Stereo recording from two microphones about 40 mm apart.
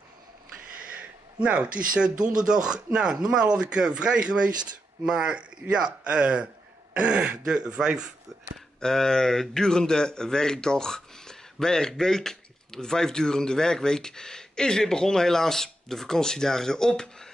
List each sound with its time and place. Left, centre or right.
0.9 s speech: right
8.7 s speech: centre